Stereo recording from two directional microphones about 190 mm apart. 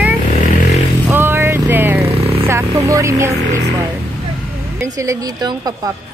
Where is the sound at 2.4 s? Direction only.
15° right (ahead or behind).